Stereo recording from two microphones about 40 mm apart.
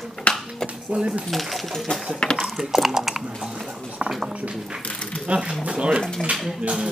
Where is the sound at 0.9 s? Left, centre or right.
Right.